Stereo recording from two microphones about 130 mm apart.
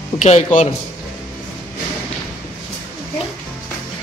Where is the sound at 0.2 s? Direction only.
65° left (ahead or behind).